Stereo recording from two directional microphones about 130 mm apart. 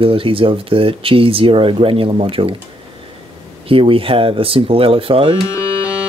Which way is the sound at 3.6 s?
45° right (ahead or behind).